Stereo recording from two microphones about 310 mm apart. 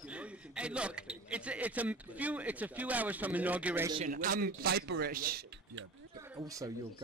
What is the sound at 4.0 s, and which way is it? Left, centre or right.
A man's voice, right.